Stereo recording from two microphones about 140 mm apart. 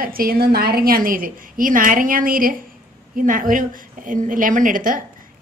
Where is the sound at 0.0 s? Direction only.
90° right.